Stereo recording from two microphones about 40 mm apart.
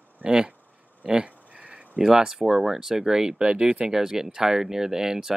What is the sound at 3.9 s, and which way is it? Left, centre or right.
Speech, centre.